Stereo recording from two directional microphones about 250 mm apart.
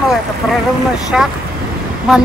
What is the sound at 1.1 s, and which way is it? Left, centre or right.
Speech, centre.